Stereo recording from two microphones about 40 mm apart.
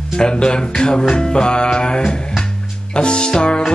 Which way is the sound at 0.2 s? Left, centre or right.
Left.